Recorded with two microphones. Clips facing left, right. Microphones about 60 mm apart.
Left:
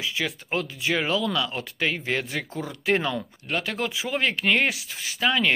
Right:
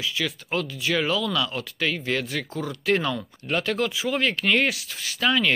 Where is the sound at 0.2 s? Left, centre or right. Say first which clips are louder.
Even; left.